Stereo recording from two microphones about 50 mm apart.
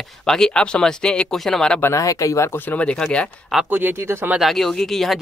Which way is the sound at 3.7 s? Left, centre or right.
Right.